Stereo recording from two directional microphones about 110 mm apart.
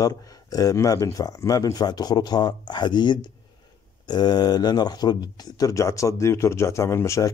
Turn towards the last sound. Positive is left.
turn(degrees=25)  # may be behind; listen again after turning